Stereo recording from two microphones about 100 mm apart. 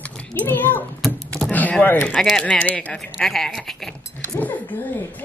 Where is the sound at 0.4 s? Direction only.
20° left (ahead or behind).